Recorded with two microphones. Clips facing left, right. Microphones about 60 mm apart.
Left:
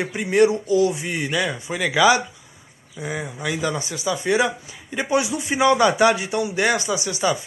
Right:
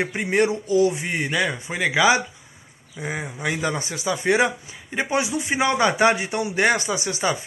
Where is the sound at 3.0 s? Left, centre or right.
Right.